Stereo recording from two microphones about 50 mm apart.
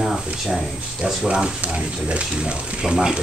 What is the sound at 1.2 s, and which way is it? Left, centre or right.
Speech, centre.